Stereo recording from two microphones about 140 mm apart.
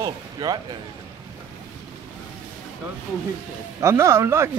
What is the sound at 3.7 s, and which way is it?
Speech, 20° right (ahead or behind).